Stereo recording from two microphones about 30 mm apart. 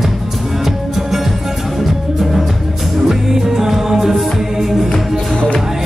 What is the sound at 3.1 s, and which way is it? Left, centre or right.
Music, centre.